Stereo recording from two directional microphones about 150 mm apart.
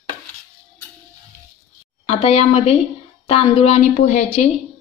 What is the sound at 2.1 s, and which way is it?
A woman's voice, 40° left (ahead or behind).